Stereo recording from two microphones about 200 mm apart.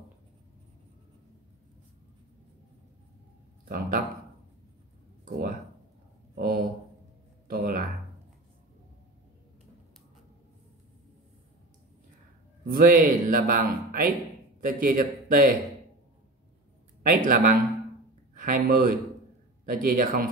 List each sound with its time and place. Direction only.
3.6 s speech: 50° right (ahead or behind)
6.3 s speech: 50° right (ahead or behind)
12.6 s speech: 45° right (ahead or behind)
17.0 s speech: 45° right (ahead or behind)